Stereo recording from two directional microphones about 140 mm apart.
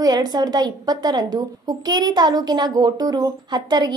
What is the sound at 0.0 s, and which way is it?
A woman's voice, 30° right (ahead or behind).